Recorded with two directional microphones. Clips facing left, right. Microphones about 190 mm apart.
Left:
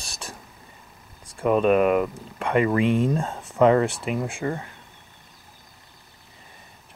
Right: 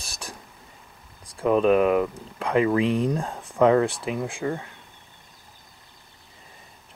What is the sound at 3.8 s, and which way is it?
Speech, centre (ahead or behind).